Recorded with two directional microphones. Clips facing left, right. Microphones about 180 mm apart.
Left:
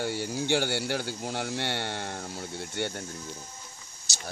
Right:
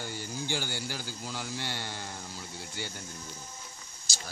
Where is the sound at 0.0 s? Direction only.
70° left (ahead or behind).